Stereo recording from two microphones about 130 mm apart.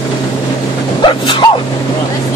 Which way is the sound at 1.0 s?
40° left (ahead or behind).